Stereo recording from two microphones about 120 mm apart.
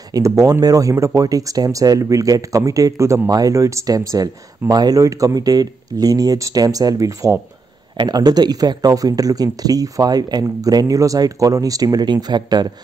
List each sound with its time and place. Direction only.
0.1 s speech: 30° right (ahead or behind)